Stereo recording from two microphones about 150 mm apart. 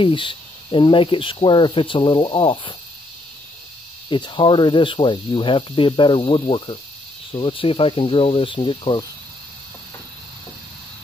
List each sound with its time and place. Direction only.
0.0 s speech: 35° left (ahead or behind)
4.1 s speech: 30° left (ahead or behind)